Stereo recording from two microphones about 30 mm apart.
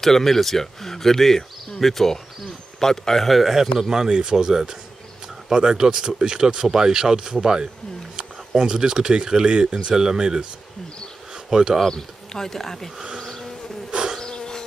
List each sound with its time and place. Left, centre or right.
0.0 s speech: centre
3.3 s speech: centre
4.1 s speech: right
11.5 s speech: right
12.4 s speech: centre
13.2 s bee: centre
13.8 s insect: right
14.2 s insect: left